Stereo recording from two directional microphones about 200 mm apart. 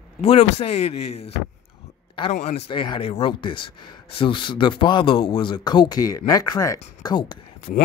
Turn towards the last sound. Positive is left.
turn(degrees=25)  # may be behind; listen again after turning